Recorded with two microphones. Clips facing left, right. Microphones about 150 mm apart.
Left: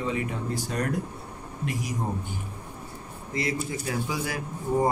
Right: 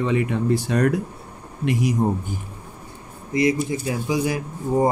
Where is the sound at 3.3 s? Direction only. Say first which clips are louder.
Right 9 dB; 15° right (ahead or behind).